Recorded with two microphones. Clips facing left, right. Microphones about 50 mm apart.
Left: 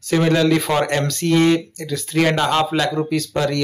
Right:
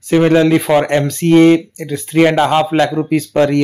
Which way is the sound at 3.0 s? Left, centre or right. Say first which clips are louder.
Right 7 dB; right.